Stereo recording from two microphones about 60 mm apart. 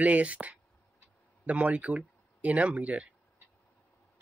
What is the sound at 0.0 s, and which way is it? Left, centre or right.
Speech, right.